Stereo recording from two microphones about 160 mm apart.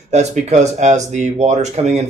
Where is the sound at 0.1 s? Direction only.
45° right (ahead or behind).